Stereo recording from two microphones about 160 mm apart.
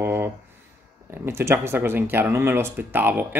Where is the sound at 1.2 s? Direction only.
15° right (ahead or behind).